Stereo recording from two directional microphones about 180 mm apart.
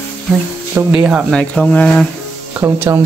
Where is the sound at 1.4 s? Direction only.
10° left (ahead or behind).